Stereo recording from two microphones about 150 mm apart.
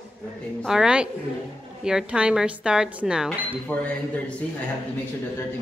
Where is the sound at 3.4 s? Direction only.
10° left (ahead or behind).